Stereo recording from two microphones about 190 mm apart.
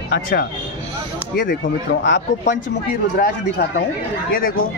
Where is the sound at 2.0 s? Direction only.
65° left (ahead or behind).